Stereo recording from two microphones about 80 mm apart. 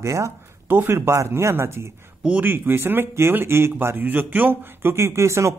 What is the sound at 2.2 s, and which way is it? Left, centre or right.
Speech, centre.